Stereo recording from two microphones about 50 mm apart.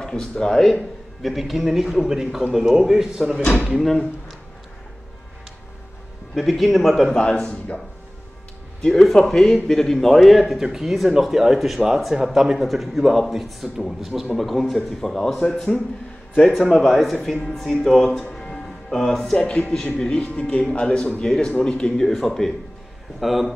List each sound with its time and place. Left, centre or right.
0.0 s speech: centre
1.2 s a man's voice: centre
3.7 s a man's voice: centre
6.3 s a man's voice: centre
8.8 s a man's voice: centre
16.8 s a man's voice: centre
18.2 s music: left
18.5 s music: centre
19.3 s speech: left
22.0 s a man's voice: centre